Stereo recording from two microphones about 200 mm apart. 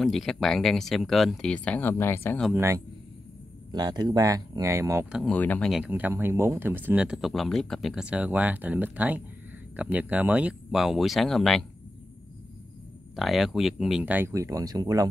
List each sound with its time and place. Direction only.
0.0 s speech: centre (ahead or behind)
2.5 s speech: 15° right (ahead or behind)
5.2 s speech: 5° left (ahead or behind)
13.1 s speech: centre (ahead or behind); by 15.0 s 20° right (ahead or behind)